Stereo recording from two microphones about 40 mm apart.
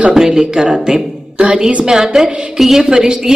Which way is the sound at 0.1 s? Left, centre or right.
Centre.